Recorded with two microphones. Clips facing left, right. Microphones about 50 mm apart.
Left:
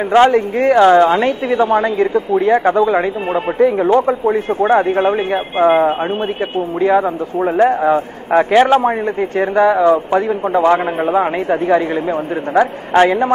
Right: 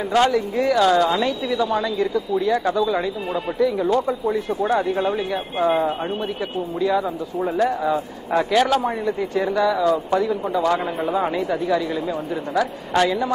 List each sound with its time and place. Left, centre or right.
0.1 s a woman's voice: left